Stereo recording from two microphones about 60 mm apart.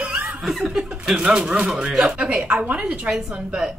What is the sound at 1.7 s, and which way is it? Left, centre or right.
Speech, centre.